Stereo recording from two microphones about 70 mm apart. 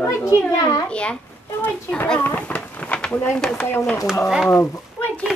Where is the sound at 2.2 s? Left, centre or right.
Left.